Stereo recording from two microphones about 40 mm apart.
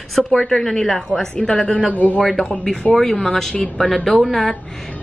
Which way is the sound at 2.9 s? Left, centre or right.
Centre.